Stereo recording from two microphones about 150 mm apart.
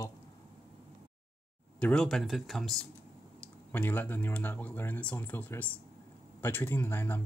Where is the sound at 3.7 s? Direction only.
10° left (ahead or behind).